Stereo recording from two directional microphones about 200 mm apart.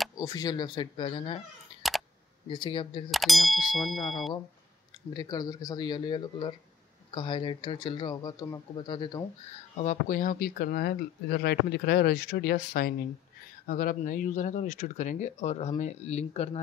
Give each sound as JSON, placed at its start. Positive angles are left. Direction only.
{"t": 0.2, "sound": "speech", "side_deg": 20}
{"t": 1.8, "sound": "a sound", "side_deg": 0}
{"t": 2.5, "sound": "speech", "side_deg": 25}
{"t": 3.1, "sound": "speech", "side_deg": 0}
{"t": 5.1, "sound": "speech", "side_deg": 20}
{"t": 9.8, "sound": "speech", "side_deg": 40}